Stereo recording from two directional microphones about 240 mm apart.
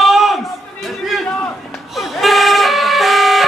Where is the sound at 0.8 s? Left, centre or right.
Centre.